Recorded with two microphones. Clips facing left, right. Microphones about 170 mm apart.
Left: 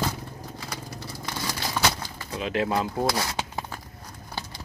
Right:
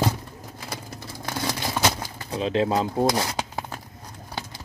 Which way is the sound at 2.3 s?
25° right (ahead or behind).